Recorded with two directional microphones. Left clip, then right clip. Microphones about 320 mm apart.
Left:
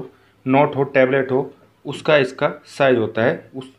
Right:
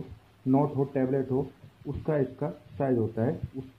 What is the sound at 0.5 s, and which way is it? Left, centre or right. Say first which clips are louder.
Speech: left 12 dB; left.